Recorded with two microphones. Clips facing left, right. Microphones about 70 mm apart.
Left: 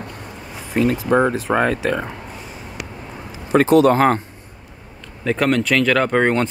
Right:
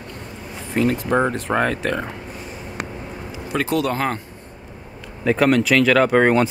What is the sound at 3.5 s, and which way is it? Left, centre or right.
Speech, left.